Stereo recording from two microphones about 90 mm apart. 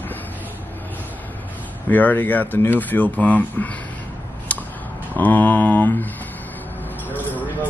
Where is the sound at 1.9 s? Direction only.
20° left (ahead or behind).